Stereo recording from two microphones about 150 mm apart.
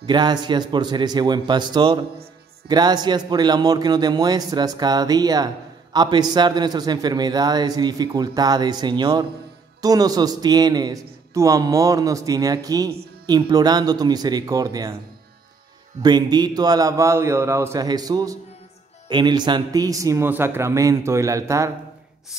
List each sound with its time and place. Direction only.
0.0 s a man's voice: 30° right (ahead or behind)
16.0 s a man's voice: 30° right (ahead or behind)